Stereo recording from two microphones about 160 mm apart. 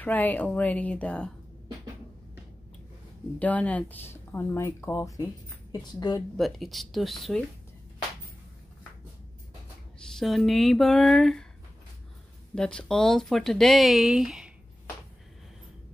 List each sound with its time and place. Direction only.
0.0 s speech: 10° left (ahead or behind)
3.3 s a woman's voice: 10° left (ahead or behind); by 6.2 s 25° left (ahead or behind)
6.3 s speech: centre (ahead or behind)
10.0 s speech: centre (ahead or behind)
12.5 s speech: 5° left (ahead or behind)